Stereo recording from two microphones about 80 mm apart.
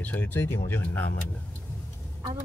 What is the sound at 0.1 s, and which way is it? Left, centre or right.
Speech, left.